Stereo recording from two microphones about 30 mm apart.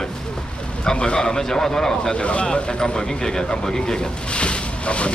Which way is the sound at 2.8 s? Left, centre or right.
Left.